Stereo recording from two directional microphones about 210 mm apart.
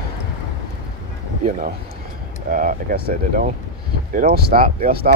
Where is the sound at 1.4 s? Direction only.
40° right (ahead or behind).